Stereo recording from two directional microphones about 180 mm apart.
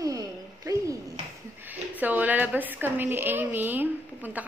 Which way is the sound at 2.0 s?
10° right (ahead or behind).